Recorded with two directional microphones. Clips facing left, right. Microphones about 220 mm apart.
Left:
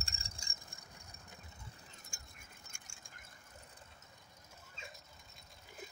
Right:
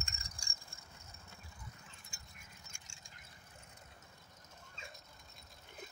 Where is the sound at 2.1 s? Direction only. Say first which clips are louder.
Left 1 dB; 45° left (ahead or behind).